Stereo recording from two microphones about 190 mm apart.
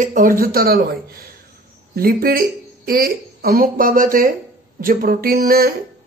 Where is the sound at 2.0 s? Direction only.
50° right (ahead or behind).